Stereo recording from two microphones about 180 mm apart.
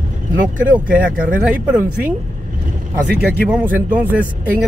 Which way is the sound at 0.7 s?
10° right (ahead or behind).